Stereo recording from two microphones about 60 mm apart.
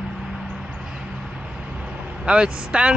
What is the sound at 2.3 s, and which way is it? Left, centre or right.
Speech, centre.